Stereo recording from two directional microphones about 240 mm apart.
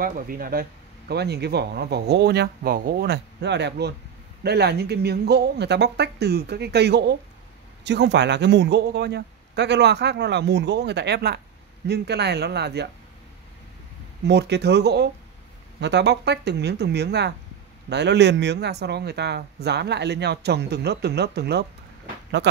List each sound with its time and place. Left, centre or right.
0.0 s speech: right
14.2 s speech: right